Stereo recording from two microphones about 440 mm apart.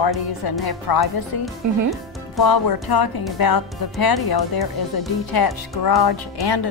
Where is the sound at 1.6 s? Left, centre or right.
Right.